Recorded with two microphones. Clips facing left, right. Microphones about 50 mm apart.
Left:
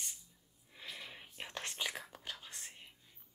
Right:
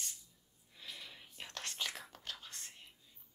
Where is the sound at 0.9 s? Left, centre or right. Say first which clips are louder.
Left 2 dB; left.